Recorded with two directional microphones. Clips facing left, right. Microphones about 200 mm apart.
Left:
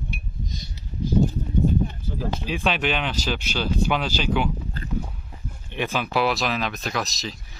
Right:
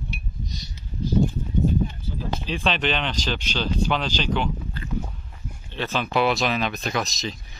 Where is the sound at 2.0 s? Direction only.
50° left (ahead or behind).